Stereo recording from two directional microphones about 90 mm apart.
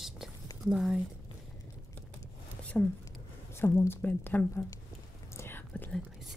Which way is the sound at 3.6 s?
25° left (ahead or behind).